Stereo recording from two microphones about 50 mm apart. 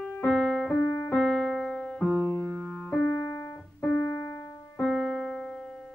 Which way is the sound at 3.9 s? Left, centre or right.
Left.